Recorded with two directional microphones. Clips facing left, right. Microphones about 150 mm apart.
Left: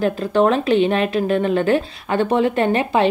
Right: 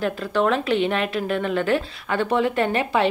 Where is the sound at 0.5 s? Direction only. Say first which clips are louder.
Left 5 dB; 30° left (ahead or behind).